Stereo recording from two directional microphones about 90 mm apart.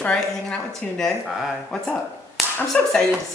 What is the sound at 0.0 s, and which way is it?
A woman's voice, 10° left (ahead or behind).